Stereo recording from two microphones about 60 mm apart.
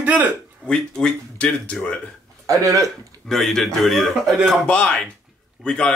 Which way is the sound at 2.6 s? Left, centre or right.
Right.